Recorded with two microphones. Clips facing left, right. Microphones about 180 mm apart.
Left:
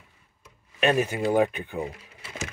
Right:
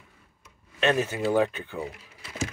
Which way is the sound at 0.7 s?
10° left (ahead or behind).